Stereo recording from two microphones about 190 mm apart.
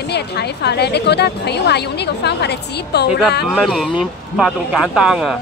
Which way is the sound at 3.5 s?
Centre (ahead or behind).